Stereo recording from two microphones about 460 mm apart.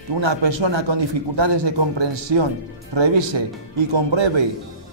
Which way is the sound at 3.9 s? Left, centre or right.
Right.